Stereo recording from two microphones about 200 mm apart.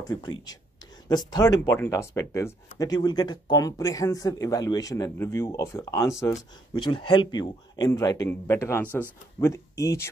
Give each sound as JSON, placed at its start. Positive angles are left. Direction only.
{"t": 0.0, "sound": "speech", "side_deg": 20}